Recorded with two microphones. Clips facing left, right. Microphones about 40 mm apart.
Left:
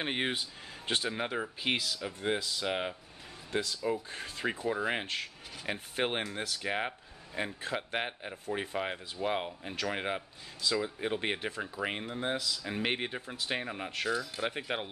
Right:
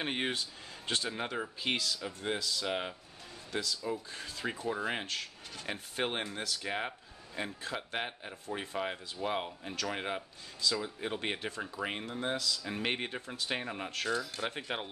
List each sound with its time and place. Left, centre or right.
0.0 s speech: centre
3.5 s speech: left
4.6 s speech: centre
5.0 s speech: left
6.4 s speech: left; by 14.9 s centre